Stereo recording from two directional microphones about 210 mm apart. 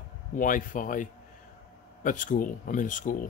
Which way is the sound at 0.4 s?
40° left (ahead or behind).